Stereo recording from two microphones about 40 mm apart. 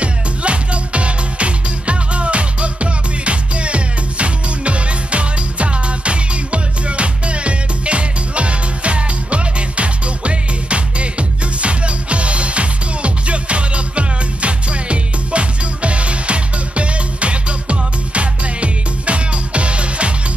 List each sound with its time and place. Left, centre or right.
0.0 s music: right